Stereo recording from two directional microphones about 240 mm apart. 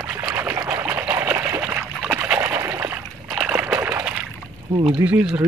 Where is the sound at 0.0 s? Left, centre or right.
Centre.